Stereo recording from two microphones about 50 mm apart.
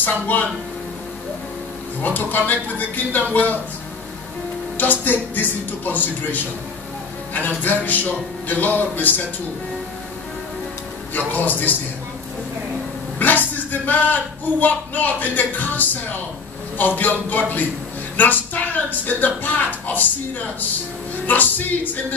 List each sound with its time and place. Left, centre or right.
0.0 s speech: left
2.0 s speech: left
4.7 s speech: left
7.4 s speech: left
11.1 s speech: left
13.2 s a sound: left
14.6 s speech: left
21.3 s speech: left